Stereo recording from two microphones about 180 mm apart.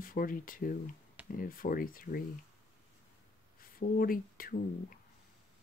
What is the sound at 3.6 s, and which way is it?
Speech, 50° left (ahead or behind).